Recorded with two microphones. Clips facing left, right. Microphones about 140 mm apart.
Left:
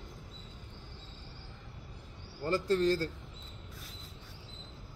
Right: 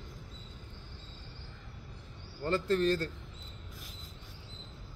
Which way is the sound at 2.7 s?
25° left (ahead or behind).